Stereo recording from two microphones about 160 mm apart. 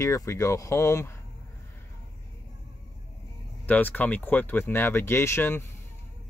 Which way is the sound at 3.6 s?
10° left (ahead or behind).